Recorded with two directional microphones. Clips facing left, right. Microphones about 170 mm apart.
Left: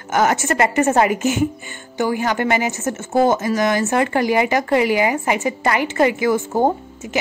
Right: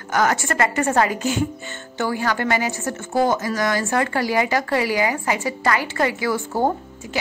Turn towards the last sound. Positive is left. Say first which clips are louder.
# left 3 dB
turn(degrees=20)  # may be behind; listen again after turning